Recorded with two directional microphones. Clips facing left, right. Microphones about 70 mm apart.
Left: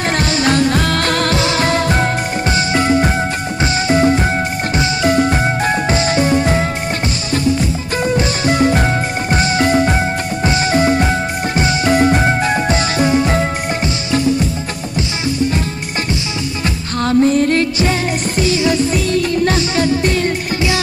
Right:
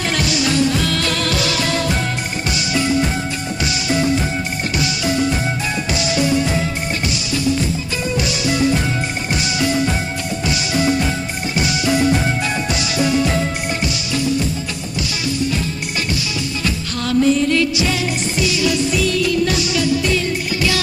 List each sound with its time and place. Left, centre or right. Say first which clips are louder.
0.0 s music: left 4 dB; left
1.3 s music: left 4 dB; left
8.2 s music: left 2 dB; left
16.6 s music: left 6 dB; left